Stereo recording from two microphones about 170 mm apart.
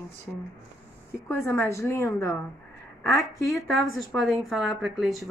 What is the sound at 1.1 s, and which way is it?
A woman's voice, 15° left (ahead or behind).